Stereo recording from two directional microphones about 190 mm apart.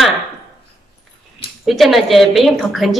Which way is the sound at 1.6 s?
Centre (ahead or behind).